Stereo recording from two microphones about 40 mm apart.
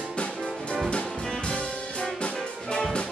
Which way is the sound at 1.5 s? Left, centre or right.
Left.